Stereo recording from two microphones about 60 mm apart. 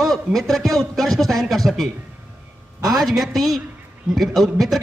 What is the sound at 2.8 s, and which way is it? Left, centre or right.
Speech, right.